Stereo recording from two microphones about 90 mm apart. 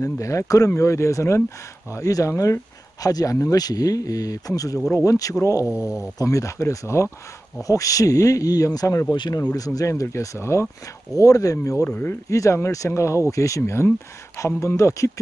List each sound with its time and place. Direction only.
0.0 s speech: 35° left (ahead or behind)
11.8 s speech: 20° left (ahead or behind)